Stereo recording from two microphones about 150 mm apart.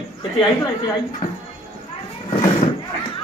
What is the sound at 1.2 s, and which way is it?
Speech, 25° left (ahead or behind).